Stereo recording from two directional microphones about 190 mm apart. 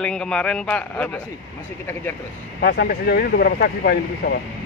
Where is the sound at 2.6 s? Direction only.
60° left (ahead or behind).